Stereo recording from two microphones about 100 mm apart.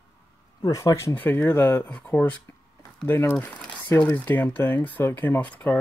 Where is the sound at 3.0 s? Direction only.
25° left (ahead or behind).